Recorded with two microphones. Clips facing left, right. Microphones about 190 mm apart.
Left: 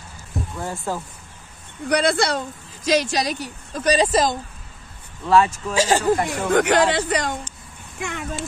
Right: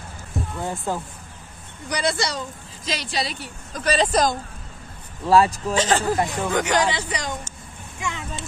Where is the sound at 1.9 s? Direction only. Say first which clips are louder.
Left 5 dB; 60° left (ahead or behind).